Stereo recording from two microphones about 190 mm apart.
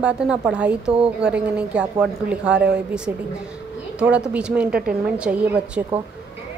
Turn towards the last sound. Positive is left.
turn(degrees=-5)  # may be behind; listen again after turning